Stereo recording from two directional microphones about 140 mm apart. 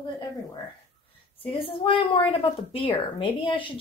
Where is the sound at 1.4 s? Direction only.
40° left (ahead or behind).